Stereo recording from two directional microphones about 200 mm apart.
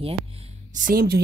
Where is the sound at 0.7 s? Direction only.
45° right (ahead or behind).